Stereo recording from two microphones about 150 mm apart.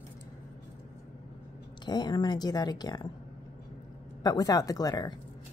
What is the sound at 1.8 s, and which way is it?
Speech, 30° left (ahead or behind).